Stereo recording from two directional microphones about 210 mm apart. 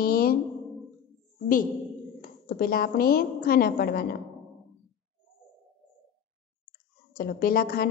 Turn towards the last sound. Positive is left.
turn(degrees=45)  # may be behind; listen again after turning